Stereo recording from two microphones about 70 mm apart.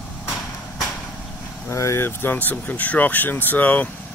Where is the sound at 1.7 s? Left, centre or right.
Left.